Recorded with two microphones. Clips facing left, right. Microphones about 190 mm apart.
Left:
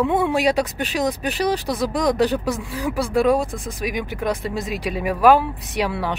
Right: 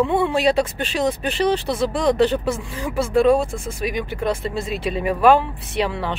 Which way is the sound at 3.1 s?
15° left (ahead or behind).